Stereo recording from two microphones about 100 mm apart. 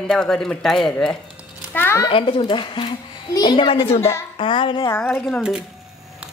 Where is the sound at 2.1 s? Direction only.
65° left (ahead or behind).